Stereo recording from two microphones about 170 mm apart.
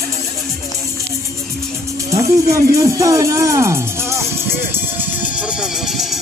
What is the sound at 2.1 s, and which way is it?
Speech, 20° right (ahead or behind).